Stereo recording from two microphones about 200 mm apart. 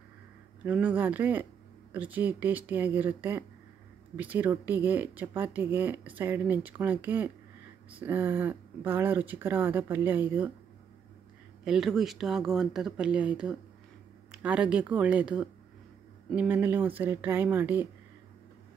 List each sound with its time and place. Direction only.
0.7 s speech: 10° right (ahead or behind)
11.6 s speech: centre (ahead or behind)